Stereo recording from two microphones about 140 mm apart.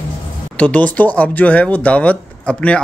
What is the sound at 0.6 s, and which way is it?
Speech, 10° left (ahead or behind).